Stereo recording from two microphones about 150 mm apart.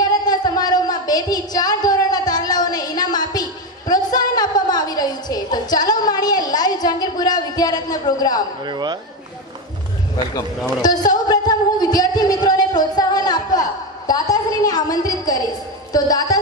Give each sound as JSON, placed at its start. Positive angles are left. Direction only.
{"t": 0.2, "sound": "a sound", "side_deg": 25}
{"t": 7.5, "sound": "a woman's voice", "side_deg": 25}
{"t": 8.6, "sound": "speech", "side_deg": -30}
{"t": 10.1, "sound": "a man's voice", "side_deg": 25}